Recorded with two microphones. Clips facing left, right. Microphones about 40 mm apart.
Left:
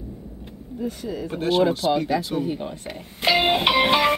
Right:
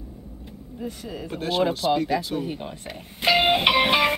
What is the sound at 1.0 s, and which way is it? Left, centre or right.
Speech, centre.